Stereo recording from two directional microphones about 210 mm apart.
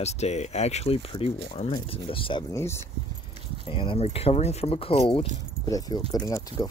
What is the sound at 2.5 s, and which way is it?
Speech, 10° left (ahead or behind).